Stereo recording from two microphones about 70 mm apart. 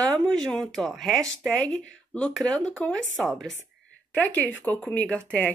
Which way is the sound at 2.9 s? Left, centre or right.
Centre.